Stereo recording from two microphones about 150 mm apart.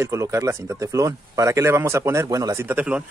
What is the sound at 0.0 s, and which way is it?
Speech, 20° right (ahead or behind).